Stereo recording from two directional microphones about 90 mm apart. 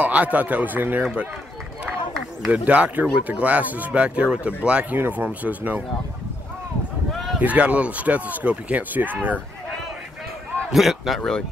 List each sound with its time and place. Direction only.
0.0 s speech: 15° right (ahead or behind)
2.5 s speech: 15° right (ahead or behind)
7.1 s a sound: centre (ahead or behind)
7.3 s speech: 15° right (ahead or behind)
10.7 s a man's voice: centre (ahead or behind)